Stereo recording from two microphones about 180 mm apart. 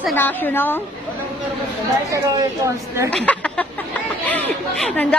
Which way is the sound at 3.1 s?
5° left (ahead or behind).